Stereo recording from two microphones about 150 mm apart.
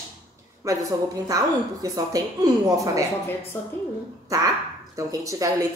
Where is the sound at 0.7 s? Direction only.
25° right (ahead or behind).